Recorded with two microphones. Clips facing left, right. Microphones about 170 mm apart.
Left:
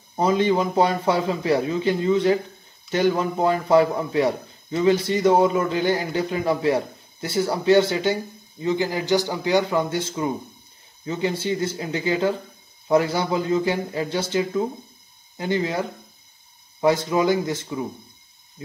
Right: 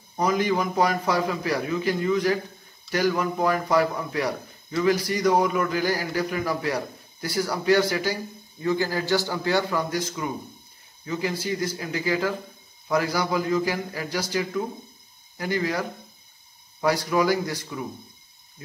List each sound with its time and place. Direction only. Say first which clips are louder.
0.1 s speech: left 4 dB; 25° left (ahead or behind)
16.8 s speech: left 3 dB; 25° left (ahead or behind)